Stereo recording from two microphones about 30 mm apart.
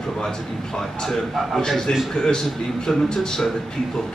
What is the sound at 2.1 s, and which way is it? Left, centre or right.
Speech, left.